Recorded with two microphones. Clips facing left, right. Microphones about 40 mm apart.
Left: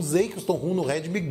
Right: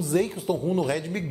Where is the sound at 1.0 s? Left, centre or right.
Centre.